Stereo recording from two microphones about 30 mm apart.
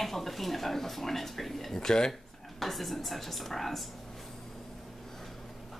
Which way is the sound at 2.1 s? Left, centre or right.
Centre.